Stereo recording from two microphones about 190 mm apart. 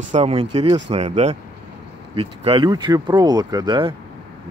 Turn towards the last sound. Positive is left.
turn(degrees=-25)  # may be behind; listen again after turning